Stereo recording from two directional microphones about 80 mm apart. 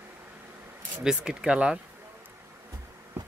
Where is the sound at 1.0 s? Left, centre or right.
Centre.